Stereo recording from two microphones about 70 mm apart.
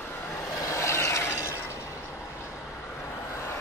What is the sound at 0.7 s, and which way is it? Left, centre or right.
Mechanisms, left.